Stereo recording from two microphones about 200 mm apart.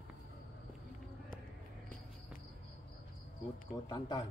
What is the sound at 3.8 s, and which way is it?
Speech, 20° left (ahead or behind).